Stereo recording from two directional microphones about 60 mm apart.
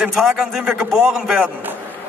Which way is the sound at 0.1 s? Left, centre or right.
Centre.